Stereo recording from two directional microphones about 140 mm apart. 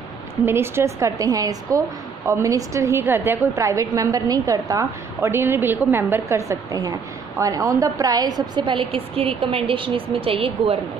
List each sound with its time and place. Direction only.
0.5 s a woman's voice: 15° right (ahead or behind); by 10.8 s 40° right (ahead or behind)